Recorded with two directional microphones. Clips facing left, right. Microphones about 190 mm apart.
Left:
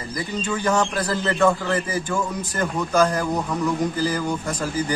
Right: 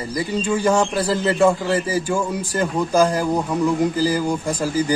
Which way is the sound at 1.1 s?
25° right (ahead or behind).